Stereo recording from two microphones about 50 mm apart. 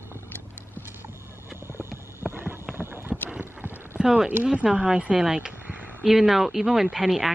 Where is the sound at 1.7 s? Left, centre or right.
Right.